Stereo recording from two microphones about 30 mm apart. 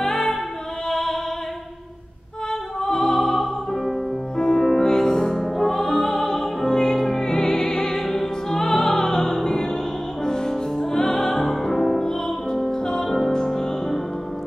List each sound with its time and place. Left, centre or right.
0.0 s music: centre
2.8 s opera: centre
4.4 s music: centre